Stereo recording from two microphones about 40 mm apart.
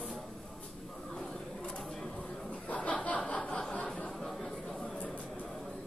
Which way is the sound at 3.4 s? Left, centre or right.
Left.